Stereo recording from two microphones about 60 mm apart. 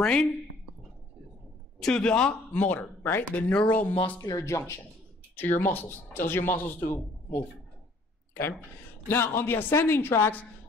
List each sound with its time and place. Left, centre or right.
0.0 s a man's voice: centre
1.8 s a man's voice: centre
2.5 s speech: left
3.5 s speech: left
4.2 s speech: left
4.5 s speech: left
5.3 s speech: left
9.0 s speech: left